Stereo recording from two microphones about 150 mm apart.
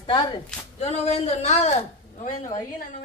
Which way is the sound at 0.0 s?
30° left (ahead or behind).